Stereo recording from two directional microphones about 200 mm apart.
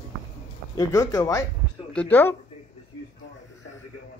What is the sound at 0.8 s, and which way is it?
Speech, 15° left (ahead or behind).